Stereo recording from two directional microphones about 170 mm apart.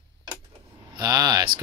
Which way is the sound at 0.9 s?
20° right (ahead or behind).